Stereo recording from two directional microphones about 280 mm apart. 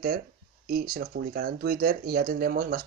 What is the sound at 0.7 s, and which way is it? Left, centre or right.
Speech, right.